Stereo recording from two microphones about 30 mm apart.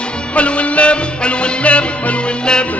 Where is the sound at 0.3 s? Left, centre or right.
Left.